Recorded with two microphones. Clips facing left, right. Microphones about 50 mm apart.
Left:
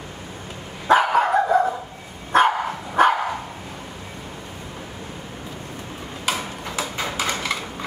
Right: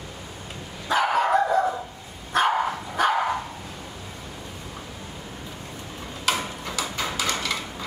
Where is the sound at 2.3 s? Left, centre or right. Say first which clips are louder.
Left 4 dB; left.